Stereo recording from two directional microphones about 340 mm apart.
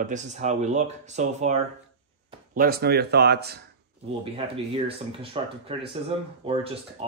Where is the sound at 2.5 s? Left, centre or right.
Right.